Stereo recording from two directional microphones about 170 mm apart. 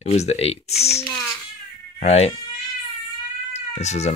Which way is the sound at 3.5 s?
40° left (ahead or behind).